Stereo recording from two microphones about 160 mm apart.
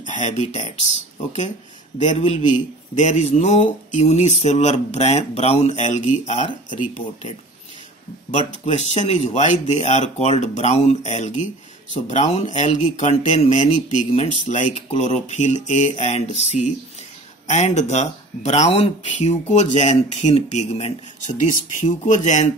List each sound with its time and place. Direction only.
0.0 s speech: 50° left (ahead or behind)
2.1 s speech: 40° left (ahead or behind)
8.3 s speech: 45° left (ahead or behind)